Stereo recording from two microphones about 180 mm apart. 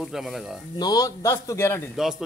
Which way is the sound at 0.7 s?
20° left (ahead or behind).